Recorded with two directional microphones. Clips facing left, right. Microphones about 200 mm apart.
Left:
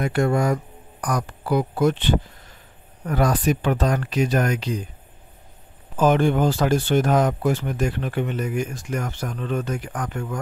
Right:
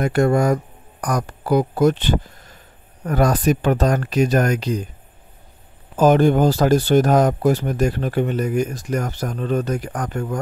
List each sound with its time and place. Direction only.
0.0 s speech: 45° right (ahead or behind)
5.9 s speech: 40° right (ahead or behind)